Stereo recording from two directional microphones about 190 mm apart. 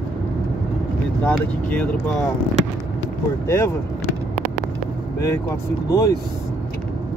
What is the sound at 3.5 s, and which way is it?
Speech, 15° left (ahead or behind).